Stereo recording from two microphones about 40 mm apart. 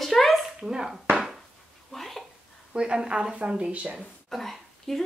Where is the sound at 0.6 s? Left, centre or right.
Centre.